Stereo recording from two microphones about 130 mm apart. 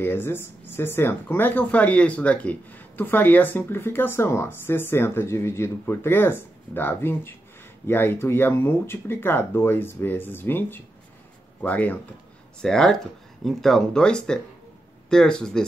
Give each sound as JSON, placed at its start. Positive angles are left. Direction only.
{"t": 0.0, "sound": "speech", "side_deg": 15}